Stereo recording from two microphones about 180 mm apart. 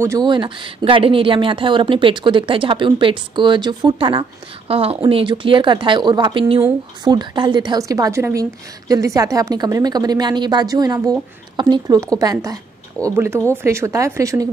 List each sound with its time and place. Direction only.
0.0 s speech: 20° right (ahead or behind)